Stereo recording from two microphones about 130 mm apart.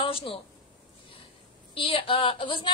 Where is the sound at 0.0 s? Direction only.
45° left (ahead or behind).